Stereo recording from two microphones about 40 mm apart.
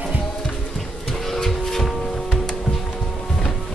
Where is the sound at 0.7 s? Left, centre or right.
Centre.